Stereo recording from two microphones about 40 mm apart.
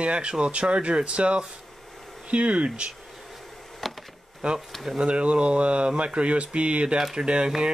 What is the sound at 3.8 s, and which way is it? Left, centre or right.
Bee, centre.